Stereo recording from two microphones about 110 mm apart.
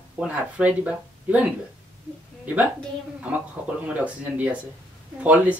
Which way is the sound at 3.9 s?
15° right (ahead or behind).